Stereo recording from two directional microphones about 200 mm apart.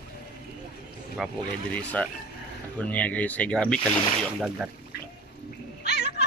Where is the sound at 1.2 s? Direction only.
Centre (ahead or behind).